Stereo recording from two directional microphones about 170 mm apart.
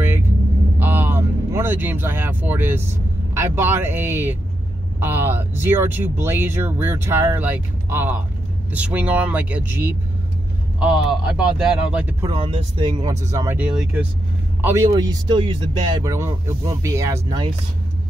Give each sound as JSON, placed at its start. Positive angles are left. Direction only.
{"t": 0.7, "sound": "speech", "side_deg": -10}
{"t": 12.2, "sound": "speech", "side_deg": -30}
{"t": 13.6, "sound": "speech", "side_deg": -5}